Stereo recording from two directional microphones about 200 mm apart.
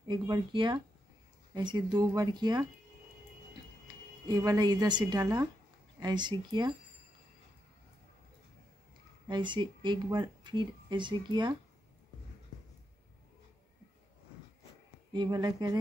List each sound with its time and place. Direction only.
0.1 s speech: 25° right (ahead or behind)
3.8 s speech: 20° right (ahead or behind)
9.3 s speech: 25° right (ahead or behind)
15.1 s speech: 20° right (ahead or behind)